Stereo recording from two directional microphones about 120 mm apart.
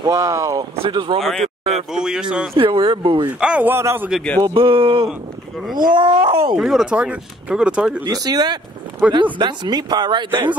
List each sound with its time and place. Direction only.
0.0 s speech: 30° right (ahead or behind)
0.8 s speech: 45° right (ahead or behind)
1.2 s speech: centre (ahead or behind)
2.5 s speech: 45° right (ahead or behind)
3.3 s speech: 10° right (ahead or behind)
4.1 s speech: 5° left (ahead or behind)
4.4 s speech: 45° right (ahead or behind)
6.5 s speech: 5° right (ahead or behind)
8.0 s speech: 35° right (ahead or behind)
9.0 s speech: 10° right (ahead or behind)
9.4 s speech: 35° right (ahead or behind)